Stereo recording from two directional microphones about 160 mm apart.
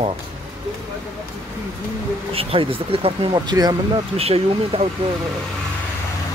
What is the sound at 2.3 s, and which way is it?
Speech, 35° right (ahead or behind).